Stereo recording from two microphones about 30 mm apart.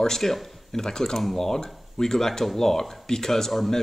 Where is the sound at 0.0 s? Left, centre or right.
Centre.